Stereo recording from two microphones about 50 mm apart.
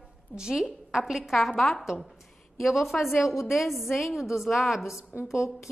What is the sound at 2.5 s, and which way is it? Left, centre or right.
A woman's voice, centre.